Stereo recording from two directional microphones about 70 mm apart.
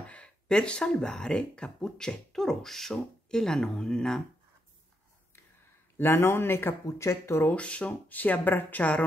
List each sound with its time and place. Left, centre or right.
0.0 s speech: centre
5.9 s speech: left
7.4 s speech: centre